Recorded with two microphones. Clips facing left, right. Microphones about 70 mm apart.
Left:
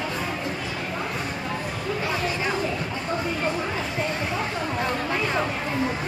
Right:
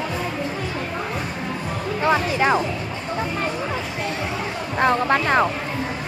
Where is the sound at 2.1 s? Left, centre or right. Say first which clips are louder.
Right 11 dB; right.